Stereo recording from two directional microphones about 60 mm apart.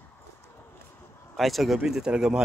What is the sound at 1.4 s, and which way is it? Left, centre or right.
Speech, centre.